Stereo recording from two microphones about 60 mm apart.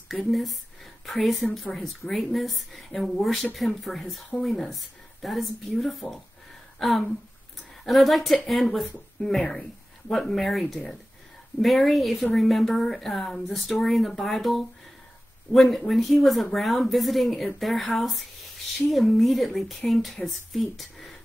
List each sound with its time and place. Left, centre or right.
0.1 s speech: centre